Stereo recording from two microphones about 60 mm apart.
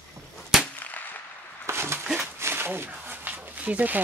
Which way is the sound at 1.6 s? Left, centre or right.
Right.